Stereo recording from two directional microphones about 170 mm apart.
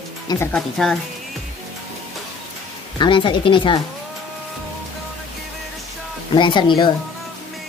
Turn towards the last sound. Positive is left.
turn(degrees=30)  # may be behind; listen again after turning